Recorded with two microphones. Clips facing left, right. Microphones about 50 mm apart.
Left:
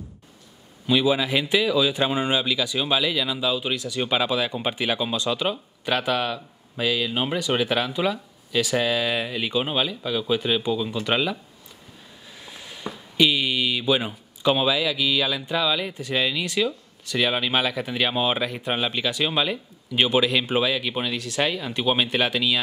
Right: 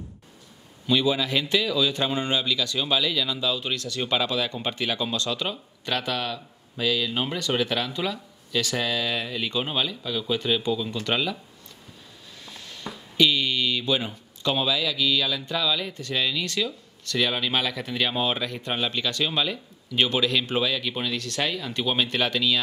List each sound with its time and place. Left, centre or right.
0.8 s a man's voice: centre
12.4 s a man's voice: centre